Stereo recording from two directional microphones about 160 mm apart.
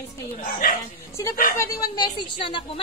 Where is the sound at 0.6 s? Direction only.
65° left (ahead or behind).